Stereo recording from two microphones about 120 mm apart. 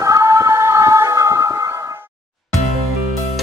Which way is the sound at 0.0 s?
25° right (ahead or behind).